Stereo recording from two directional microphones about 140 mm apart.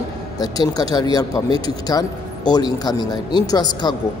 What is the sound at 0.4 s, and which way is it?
A man's voice, 25° left (ahead or behind).